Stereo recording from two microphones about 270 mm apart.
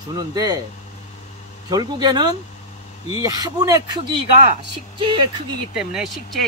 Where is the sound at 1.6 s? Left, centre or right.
Centre.